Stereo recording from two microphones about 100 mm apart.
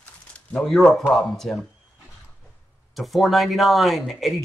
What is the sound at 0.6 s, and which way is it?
Speech, 5° left (ahead or behind).